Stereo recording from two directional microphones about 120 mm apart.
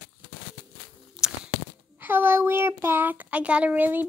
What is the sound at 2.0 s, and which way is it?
A child's voice, 20° right (ahead or behind).